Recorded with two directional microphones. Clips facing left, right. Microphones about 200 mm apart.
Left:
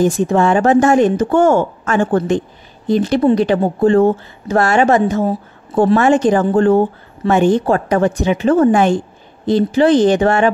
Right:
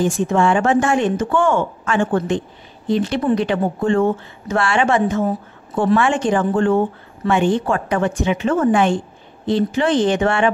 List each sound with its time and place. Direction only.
0.0 s speech: 40° left (ahead or behind)